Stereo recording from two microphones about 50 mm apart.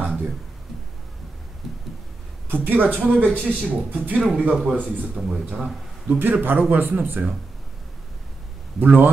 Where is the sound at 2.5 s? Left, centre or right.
Right.